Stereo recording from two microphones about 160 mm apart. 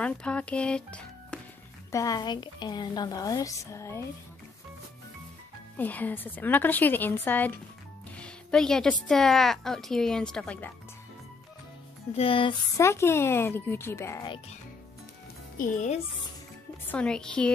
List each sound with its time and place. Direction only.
0.0 s speech: 5° left (ahead or behind)
1.9 s speech: 20° left (ahead or behind)
5.8 s a woman's voice: 10° left (ahead or behind)
12.2 s music: 35° left (ahead or behind)
12.7 s a woman's voice: 15° left (ahead or behind)
15.5 s speech: 55° left (ahead or behind)
16.8 s speech: 10° left (ahead or behind)